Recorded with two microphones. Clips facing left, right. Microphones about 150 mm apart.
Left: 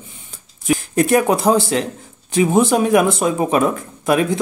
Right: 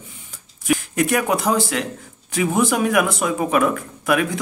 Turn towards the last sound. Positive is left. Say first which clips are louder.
# left 3 dB
turn(degrees=25)  # may be behind; listen again after turning